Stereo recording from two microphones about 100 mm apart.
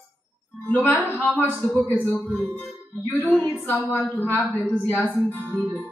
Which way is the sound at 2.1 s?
20° left (ahead or behind).